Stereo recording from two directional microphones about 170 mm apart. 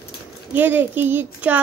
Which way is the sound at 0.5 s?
10° right (ahead or behind).